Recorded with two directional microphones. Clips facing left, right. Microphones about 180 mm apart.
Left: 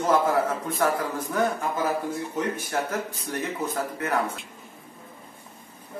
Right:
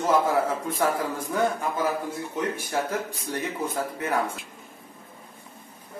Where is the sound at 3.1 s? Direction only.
15° right (ahead or behind).